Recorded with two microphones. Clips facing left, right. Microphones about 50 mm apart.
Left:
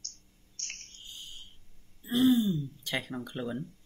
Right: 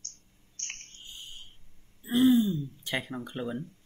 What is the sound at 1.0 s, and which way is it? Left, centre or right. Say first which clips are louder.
Cricket: right 1 dB; right.